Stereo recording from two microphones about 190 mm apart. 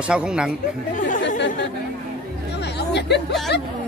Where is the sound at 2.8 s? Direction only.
60° left (ahead or behind).